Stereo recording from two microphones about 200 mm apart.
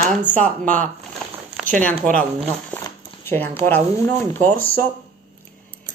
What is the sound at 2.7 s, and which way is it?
Speech, 10° left (ahead or behind).